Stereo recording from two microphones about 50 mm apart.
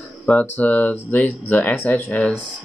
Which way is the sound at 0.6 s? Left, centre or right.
Left.